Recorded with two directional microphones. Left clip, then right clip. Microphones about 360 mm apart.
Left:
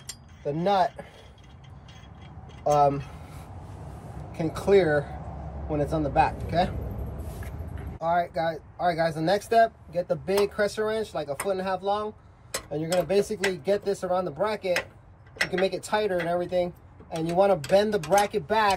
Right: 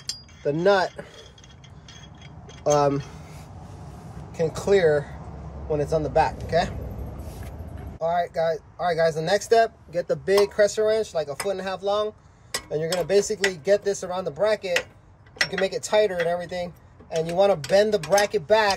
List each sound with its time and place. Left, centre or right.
0.5 s speech: right
2.6 s speech: right
4.3 s speech: right
8.0 s speech: right